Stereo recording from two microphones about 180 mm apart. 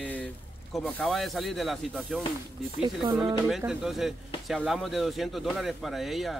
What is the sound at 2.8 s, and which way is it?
Speech, 25° right (ahead or behind).